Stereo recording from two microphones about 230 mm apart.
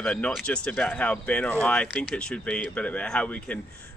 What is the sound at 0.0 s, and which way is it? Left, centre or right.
Speech, centre.